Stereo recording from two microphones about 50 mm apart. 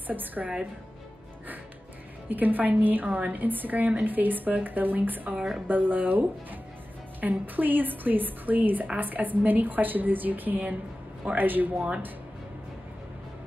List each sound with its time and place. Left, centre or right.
0.0 s a woman's voice: right
2.2 s a woman's voice: right